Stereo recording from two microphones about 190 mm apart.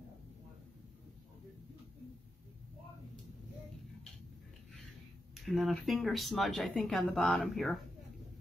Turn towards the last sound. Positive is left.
turn(degrees=0)  # may be behind; listen again after turning